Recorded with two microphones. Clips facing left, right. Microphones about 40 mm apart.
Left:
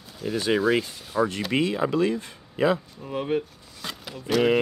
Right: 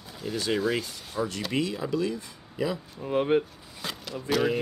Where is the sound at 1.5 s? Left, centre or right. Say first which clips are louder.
Left 3 dB; left.